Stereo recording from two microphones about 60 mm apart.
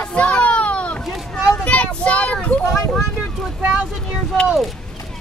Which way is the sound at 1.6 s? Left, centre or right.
Left.